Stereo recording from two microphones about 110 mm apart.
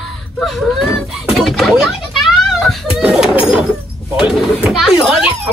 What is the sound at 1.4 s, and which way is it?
Children playing, centre (ahead or behind).